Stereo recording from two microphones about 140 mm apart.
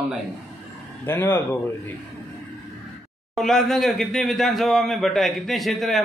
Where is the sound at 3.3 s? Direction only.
5° left (ahead or behind).